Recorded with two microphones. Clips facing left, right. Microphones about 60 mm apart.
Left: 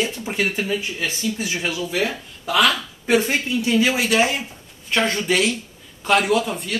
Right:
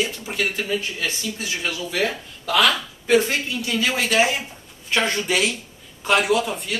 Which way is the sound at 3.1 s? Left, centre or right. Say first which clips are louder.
Even; centre.